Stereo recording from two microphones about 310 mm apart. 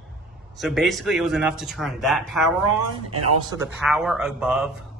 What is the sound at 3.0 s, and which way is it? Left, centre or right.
Speech, right.